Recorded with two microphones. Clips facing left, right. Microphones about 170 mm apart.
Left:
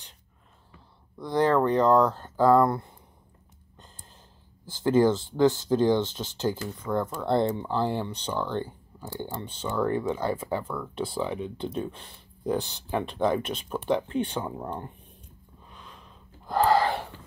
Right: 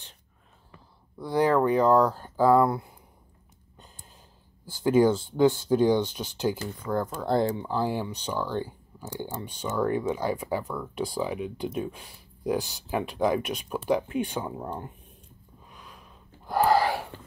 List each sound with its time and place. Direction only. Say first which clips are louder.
1.1 s speech: even; 10° right (ahead or behind)
4.8 s speech: even; 10° right (ahead or behind)
15.7 s a sound: left 1 dB; 10° right (ahead or behind)